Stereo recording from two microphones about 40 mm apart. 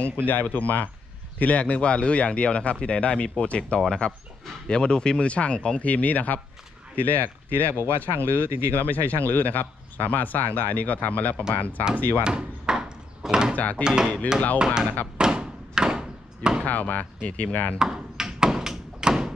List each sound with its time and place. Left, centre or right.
0.0 s speech: left
1.4 s speech: left
4.6 s speech: left
5.8 s speech: left
8.5 s speech: right
8.7 s speech: left
12.2 s a sound: right
13.3 s speech: right
13.6 s speech: left
13.8 s speech: centre
15.1 s a sound: right
16.6 s speech: left
17.7 s a sound: centre